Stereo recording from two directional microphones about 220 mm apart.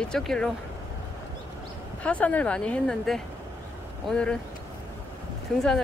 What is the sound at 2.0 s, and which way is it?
Speech, 5° left (ahead or behind).